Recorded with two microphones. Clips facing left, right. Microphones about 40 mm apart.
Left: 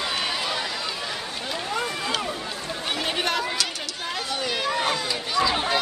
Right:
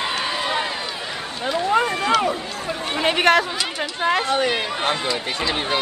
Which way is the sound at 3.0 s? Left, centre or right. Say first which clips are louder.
Right 11 dB; right.